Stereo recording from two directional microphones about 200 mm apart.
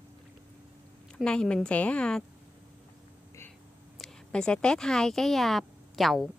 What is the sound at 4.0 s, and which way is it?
A woman's voice, 5° left (ahead or behind).